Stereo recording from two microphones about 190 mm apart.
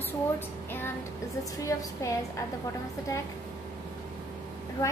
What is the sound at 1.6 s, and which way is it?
Speech, 15° left (ahead or behind).